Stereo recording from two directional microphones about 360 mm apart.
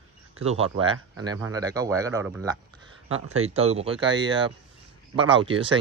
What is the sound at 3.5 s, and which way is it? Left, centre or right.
Speech, centre.